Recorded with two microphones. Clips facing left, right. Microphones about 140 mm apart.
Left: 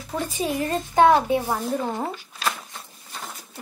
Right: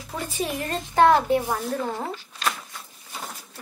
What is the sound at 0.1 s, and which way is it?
A child's voice, centre (ahead or behind).